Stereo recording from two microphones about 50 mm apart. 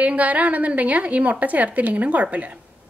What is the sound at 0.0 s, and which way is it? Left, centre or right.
A woman's voice, right.